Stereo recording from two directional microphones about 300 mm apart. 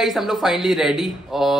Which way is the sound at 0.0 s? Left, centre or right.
Centre.